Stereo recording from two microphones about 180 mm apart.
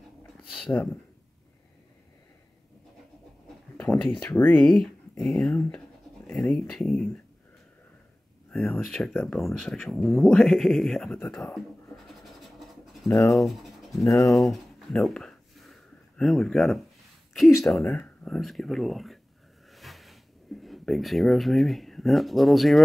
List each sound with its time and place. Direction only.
4.1 s speech: 5° left (ahead or behind)
8.5 s speech: 5° left (ahead or behind)
12.1 s scratch: centre (ahead or behind)
13.1 s speech: 15° left (ahead or behind)
13.4 s speech: centre (ahead or behind)
14.0 s speech: 20° left (ahead or behind)
14.3 s a sound: centre (ahead or behind)
16.2 s speech: centre (ahead or behind)
19.7 s a sound: centre (ahead or behind)
20.6 s speech: centre (ahead or behind)